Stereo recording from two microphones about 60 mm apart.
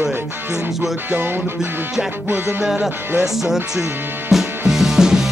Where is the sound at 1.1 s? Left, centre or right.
Right.